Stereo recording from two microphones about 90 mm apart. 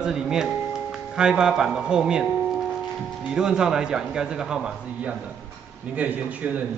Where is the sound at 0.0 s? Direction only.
5° right (ahead or behind).